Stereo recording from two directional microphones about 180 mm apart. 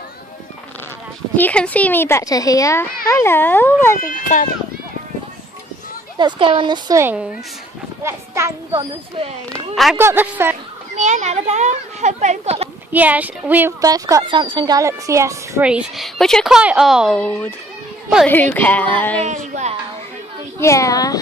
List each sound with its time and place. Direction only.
1.3 s speech: 10° left (ahead or behind)
4.3 s speech: 45° left (ahead or behind)
6.1 s a woman's voice: 25° right (ahead or behind)
9.9 s a woman's voice: 10° right (ahead or behind)
11.0 s speech: 40° right (ahead or behind)
12.9 s a woman's voice: 10° right (ahead or behind)
15.7 s a woman's voice: centre (ahead or behind)
19.2 s speech: 40° right (ahead or behind)
20.5 s speech: 15° left (ahead or behind)